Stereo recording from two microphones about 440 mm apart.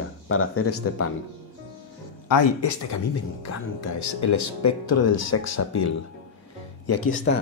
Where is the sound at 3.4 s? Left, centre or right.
Left.